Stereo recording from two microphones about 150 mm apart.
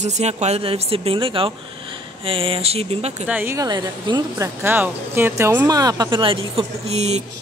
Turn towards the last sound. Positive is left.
turn(degrees=-45)  # may be behind; listen again after turning